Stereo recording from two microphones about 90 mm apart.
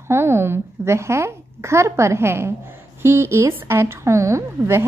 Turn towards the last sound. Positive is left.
turn(degrees=-30)  # may be behind; listen again after turning